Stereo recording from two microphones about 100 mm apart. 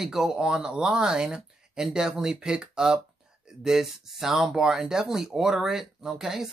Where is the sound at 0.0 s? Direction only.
5° right (ahead or behind).